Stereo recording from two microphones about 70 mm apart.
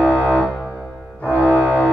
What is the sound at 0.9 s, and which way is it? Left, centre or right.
Music, centre.